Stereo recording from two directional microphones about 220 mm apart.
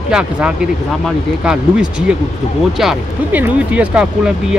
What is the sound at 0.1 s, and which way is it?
Speech, 5° right (ahead or behind).